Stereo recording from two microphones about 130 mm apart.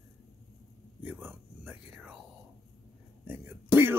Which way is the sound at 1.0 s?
Centre (ahead or behind).